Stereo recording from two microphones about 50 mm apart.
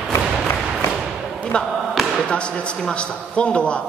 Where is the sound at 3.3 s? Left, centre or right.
Left.